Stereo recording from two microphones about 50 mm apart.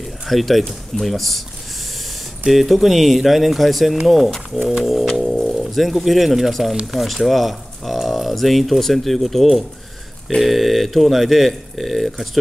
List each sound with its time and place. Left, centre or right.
0.3 s speech: centre
2.4 s speech: centre